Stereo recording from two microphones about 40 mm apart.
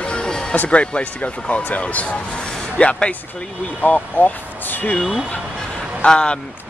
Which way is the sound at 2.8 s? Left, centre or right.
Left.